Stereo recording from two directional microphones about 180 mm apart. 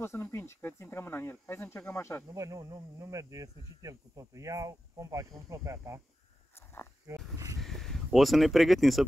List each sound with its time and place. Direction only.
0.0 s speech: 15° left (ahead or behind)
2.3 s speech: 20° right (ahead or behind)
7.1 s wild animals: 15° right (ahead or behind)
7.6 s speech: centre (ahead or behind)